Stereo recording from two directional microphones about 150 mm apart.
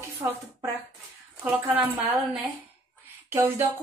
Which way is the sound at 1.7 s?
10° right (ahead or behind).